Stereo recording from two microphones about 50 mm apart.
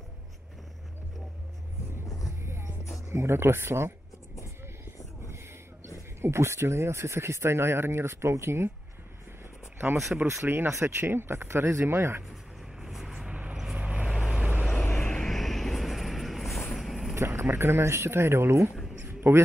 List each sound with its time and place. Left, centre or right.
2.4 s music: right
3.1 s speech: right
6.2 s speech: right
10.2 s speech: right
11.0 s speech: right
12.8 s vehicle: centre
13.3 s vehicle: right
14.1 s vehicle: centre
14.6 s vehicle: centre
17.4 s speech: right
19.0 s a sound: right